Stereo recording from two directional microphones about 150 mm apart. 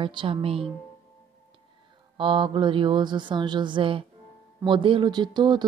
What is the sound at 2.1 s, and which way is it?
Speech, 35° right (ahead or behind).